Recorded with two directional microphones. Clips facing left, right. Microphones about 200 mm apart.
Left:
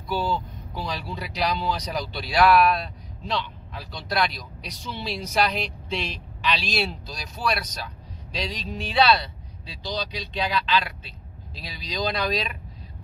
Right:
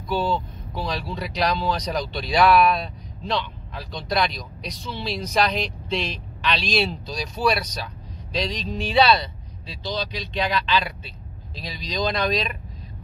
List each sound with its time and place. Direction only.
0.1 s speech: 10° left (ahead or behind)
3.9 s speech: 5° left (ahead or behind)